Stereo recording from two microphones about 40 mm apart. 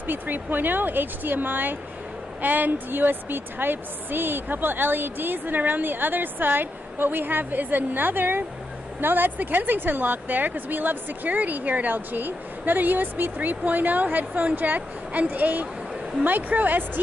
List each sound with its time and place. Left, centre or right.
0.0 s a woman's voice: right